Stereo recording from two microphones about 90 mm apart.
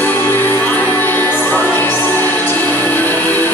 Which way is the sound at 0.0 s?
20° left (ahead or behind).